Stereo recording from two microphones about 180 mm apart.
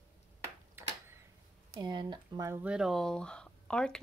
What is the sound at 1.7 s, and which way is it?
Speech, 25° right (ahead or behind).